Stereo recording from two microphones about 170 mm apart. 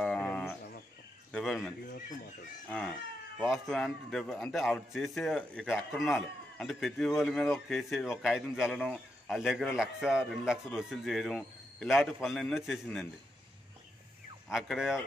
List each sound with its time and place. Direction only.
0.0 s a sound: 5° left (ahead or behind)
3.3 s a man's voice: centre (ahead or behind)
14.5 s a man's voice: centre (ahead or behind)